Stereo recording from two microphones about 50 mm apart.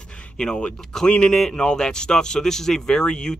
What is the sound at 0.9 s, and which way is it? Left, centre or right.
Speech, centre.